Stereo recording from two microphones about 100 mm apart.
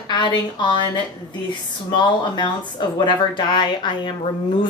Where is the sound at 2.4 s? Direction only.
50° left (ahead or behind).